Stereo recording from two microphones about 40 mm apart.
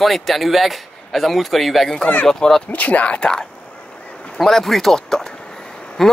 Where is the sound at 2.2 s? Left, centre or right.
Centre.